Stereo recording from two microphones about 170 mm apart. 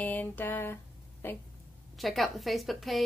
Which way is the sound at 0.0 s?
10° left (ahead or behind).